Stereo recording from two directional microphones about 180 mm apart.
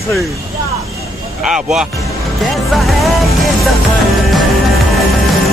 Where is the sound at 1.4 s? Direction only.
5° right (ahead or behind).